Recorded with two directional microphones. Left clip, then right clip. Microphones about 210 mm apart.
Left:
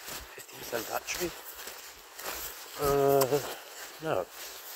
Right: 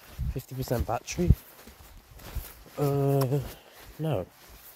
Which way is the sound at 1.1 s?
30° right (ahead or behind).